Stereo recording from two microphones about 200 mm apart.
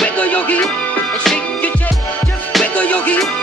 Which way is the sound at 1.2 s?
5° left (ahead or behind).